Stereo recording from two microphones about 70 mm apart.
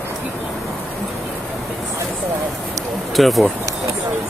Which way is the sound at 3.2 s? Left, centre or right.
Centre.